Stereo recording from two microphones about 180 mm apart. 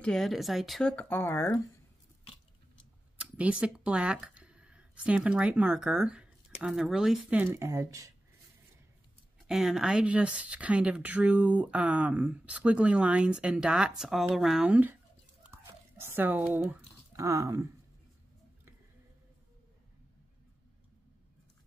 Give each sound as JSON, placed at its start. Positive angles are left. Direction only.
{"t": 0.0, "sound": "speech", "side_deg": 0}
{"t": 3.2, "sound": "speech", "side_deg": -5}
{"t": 9.5, "sound": "speech", "side_deg": 0}
{"t": 15.4, "sound": "tearing", "side_deg": -15}
{"t": 17.2, "sound": "speech", "side_deg": -20}